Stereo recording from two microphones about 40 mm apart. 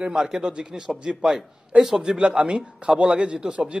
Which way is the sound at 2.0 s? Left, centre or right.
Right.